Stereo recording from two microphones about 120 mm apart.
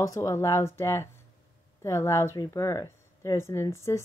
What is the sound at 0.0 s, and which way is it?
Speech, 25° left (ahead or behind).